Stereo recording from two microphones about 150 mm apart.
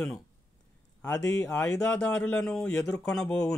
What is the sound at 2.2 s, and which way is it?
Speech, 5° left (ahead or behind).